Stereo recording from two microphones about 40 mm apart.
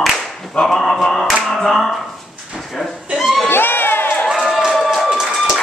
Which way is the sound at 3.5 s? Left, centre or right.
Left.